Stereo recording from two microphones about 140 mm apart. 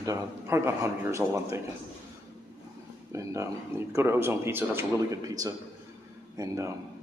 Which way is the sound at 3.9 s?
20° right (ahead or behind).